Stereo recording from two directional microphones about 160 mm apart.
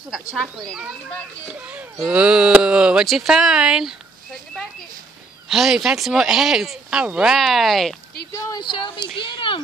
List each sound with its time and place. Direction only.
1.7 s speech: 10° right (ahead or behind)
5.5 s speech: centre (ahead or behind)
8.3 s speech: 20° left (ahead or behind)